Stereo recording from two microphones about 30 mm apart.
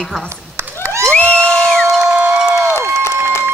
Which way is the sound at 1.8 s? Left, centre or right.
Centre.